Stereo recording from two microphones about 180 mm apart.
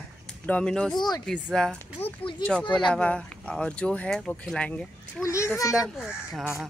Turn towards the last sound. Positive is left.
turn(degrees=0)  # may be behind; listen again after turning